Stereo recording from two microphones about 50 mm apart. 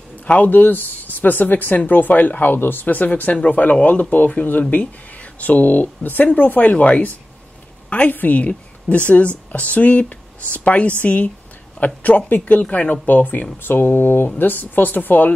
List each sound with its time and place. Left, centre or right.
0.2 s a woman's voice: left
13.0 s speech: left